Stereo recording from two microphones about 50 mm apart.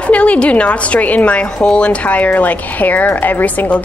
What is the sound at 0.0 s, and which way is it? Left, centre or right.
A woman's voice, left.